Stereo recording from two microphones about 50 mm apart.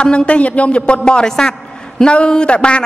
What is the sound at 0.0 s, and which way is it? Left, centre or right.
A man's voice, left.